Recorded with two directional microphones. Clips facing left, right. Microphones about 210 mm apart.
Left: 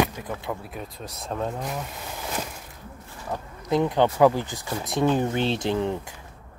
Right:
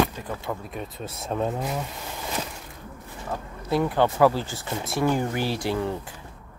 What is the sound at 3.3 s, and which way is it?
Speech, 20° left (ahead or behind).